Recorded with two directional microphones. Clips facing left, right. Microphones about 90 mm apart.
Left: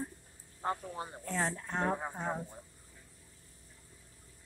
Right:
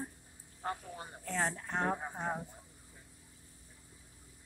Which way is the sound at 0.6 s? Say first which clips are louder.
Left 4 dB; 30° left (ahead or behind).